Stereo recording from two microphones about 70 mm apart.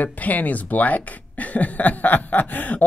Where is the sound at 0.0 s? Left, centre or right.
Left.